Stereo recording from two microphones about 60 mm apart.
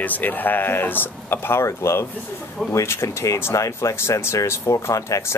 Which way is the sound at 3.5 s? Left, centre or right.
Left.